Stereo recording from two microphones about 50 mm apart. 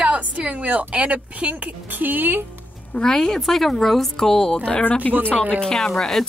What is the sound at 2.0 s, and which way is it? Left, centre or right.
Speech, right.